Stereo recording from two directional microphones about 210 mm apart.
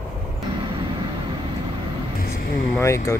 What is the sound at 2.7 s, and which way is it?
Speech, 15° left (ahead or behind).